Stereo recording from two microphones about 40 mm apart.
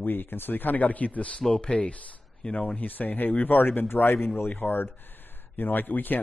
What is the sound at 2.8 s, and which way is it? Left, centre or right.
Speech, left.